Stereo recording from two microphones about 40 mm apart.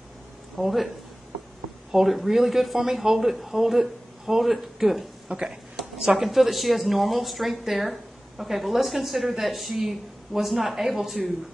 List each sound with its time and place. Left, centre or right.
0.6 s speech: centre
1.9 s speech: centre
5.3 s speech: centre
5.9 s speech: centre